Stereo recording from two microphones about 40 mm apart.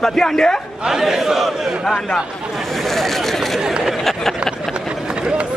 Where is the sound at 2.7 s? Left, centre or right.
Centre.